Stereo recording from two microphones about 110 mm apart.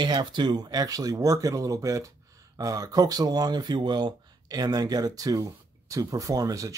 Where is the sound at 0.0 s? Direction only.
45° right (ahead or behind).